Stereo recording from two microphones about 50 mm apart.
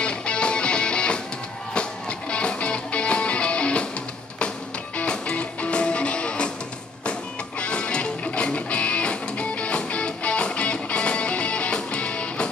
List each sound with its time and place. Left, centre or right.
0.0 s music: left
4.9 s music: left